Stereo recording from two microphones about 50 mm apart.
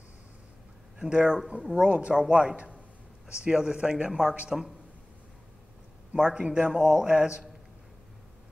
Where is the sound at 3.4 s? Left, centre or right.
Centre.